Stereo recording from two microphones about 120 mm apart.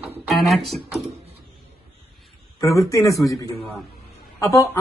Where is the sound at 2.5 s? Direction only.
25° left (ahead or behind).